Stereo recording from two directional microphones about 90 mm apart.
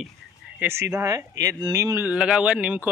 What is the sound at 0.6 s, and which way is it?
Speech, 30° right (ahead or behind).